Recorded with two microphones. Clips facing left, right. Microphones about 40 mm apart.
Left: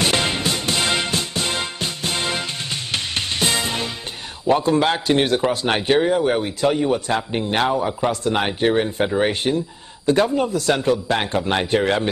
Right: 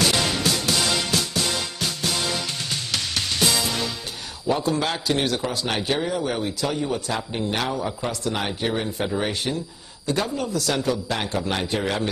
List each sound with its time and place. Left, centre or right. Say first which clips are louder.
0.0 s music: left 2 dB; left
4.5 s a man's voice: left 6 dB; left